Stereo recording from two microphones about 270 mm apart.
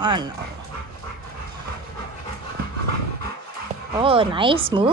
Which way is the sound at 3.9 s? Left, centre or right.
Centre.